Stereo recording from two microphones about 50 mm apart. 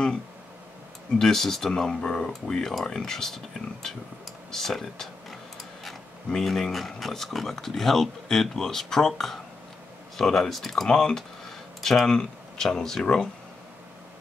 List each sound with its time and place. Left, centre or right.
1.1 s speech: centre
4.5 s speech: centre